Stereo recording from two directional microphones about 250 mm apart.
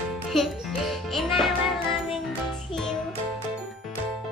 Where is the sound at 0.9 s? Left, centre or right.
Centre.